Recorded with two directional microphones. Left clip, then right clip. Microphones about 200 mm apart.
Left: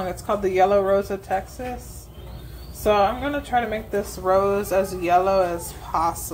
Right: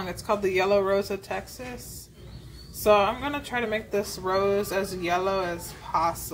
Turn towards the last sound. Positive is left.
turn(degrees=20)  # may be behind; listen again after turning